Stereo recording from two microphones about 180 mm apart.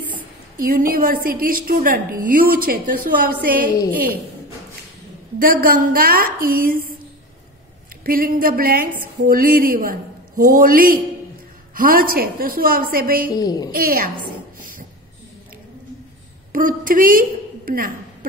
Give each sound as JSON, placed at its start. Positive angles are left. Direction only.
{"t": 0.6, "sound": "speech", "side_deg": -55}
{"t": 5.4, "sound": "speech", "side_deg": -55}
{"t": 8.0, "sound": "speech", "side_deg": -55}
{"t": 13.3, "sound": "a woman's voice", "side_deg": 20}
{"t": 13.7, "sound": "speech", "side_deg": -55}
{"t": 16.5, "sound": "a woman's voice", "side_deg": -50}